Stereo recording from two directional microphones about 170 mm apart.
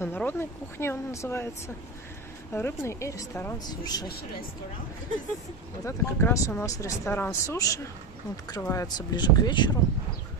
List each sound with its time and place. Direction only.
0.0 s speech: 10° left (ahead or behind)
2.5 s speech: 15° left (ahead or behind)
5.9 s speech: 15° left (ahead or behind)